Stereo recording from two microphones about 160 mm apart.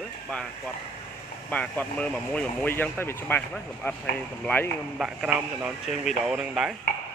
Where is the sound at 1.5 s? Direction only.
10° left (ahead or behind).